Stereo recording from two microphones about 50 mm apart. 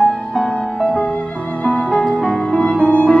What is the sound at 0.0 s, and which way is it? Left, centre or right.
Music, centre.